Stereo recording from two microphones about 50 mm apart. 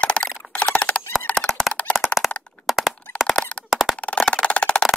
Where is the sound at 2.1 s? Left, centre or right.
Left.